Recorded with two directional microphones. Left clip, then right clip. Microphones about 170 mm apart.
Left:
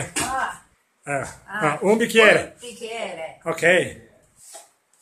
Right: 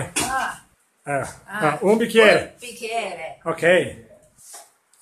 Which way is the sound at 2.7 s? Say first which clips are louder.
Right 4 dB; 25° right (ahead or behind).